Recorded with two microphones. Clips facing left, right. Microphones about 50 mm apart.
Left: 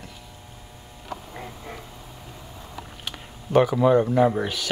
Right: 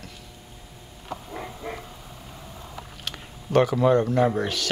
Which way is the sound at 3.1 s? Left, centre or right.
Centre.